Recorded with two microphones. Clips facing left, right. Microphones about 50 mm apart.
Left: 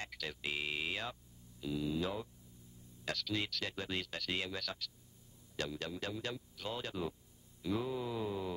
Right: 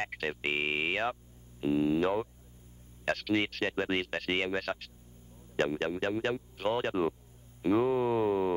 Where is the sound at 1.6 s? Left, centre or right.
Right.